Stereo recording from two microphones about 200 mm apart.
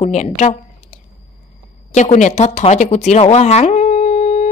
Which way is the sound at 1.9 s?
35° left (ahead or behind).